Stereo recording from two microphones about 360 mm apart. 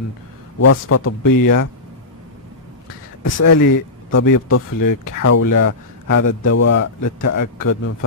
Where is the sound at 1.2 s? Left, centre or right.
Left.